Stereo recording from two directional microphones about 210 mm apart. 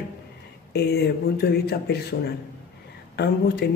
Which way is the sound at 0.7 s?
50° left (ahead or behind).